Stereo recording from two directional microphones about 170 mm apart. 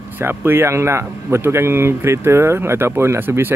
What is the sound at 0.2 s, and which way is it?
Speech, 15° right (ahead or behind).